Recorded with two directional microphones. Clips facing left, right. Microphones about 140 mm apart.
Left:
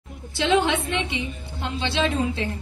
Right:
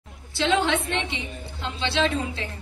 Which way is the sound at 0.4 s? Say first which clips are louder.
Left 2 dB; 20° left (ahead or behind).